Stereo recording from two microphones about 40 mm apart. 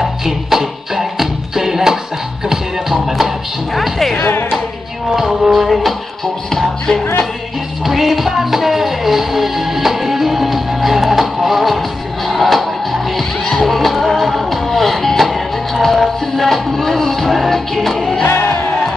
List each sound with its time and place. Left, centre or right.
0.0 s music: centre
4.2 s music: left
5.1 s music: centre
7.8 s music: centre
18.2 s music: left